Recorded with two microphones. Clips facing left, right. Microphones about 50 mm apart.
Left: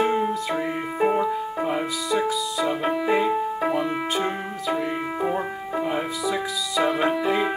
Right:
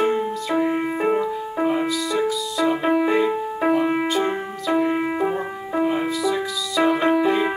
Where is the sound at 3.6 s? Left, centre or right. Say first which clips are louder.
Right 5 dB; centre.